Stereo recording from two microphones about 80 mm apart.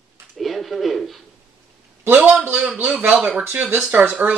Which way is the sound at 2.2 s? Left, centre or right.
Centre.